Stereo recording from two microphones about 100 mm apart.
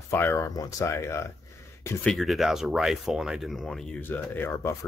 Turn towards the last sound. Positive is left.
turn(degrees=25)  # may be behind; listen again after turning